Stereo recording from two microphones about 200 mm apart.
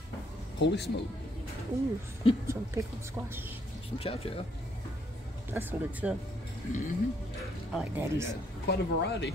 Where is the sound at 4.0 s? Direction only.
30° left (ahead or behind).